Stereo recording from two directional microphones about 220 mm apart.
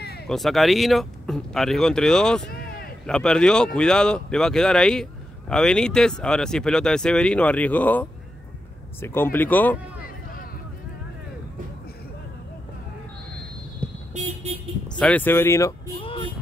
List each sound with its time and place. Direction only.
0.3 s speech: centre (ahead or behind)
14.1 s vehicle: 30° right (ahead or behind)
15.0 s speech: 5° left (ahead or behind)
16.0 s music: 25° left (ahead or behind)